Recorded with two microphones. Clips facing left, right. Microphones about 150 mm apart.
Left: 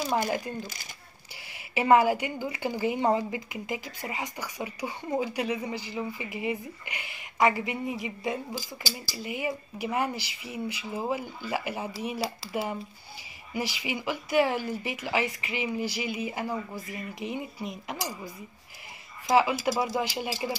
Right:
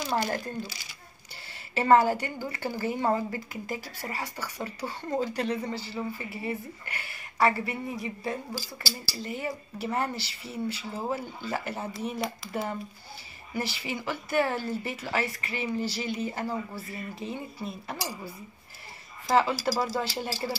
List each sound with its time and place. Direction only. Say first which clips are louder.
1.5 s a woman's voice: even; 10° left (ahead or behind)
13.5 s a woman's voice: left 1 dB; 15° left (ahead or behind)
19.2 s a woman's voice: left 1 dB; 15° left (ahead or behind)